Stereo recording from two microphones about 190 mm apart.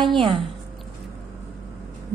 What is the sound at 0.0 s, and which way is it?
Speech, 25° right (ahead or behind).